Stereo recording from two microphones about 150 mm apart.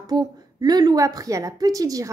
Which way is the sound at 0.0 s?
25° right (ahead or behind).